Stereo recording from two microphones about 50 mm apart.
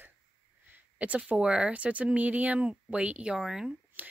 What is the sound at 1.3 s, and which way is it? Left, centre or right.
Speech, right.